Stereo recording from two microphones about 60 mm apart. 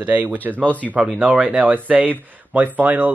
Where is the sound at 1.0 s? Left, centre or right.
Centre.